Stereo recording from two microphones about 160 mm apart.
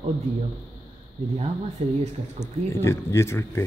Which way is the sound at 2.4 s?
15° left (ahead or behind).